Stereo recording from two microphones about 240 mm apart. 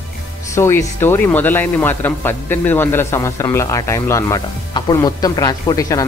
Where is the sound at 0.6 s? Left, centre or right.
Centre.